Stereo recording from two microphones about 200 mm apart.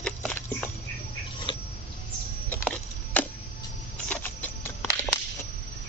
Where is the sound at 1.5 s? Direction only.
25° left (ahead or behind).